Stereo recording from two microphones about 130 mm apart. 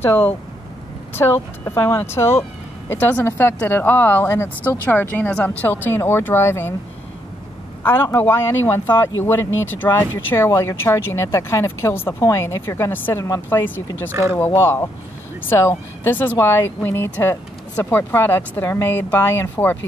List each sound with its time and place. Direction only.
0.0 s speech: 15° left (ahead or behind)
7.8 s speech: 15° left (ahead or behind)